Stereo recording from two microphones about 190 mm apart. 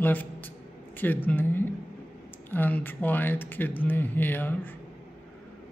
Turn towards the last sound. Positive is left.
turn(degrees=10)  # may be behind; listen again after turning